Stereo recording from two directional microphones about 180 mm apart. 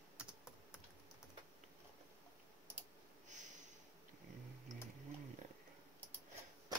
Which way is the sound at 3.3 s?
45° right (ahead or behind).